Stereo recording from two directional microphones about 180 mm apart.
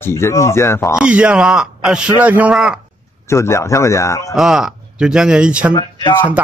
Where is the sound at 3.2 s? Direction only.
15° left (ahead or behind).